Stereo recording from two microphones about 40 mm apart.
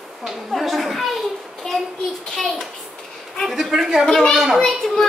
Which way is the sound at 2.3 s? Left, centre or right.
Centre.